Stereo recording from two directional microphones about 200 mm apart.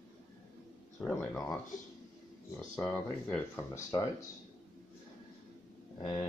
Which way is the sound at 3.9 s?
20° left (ahead or behind).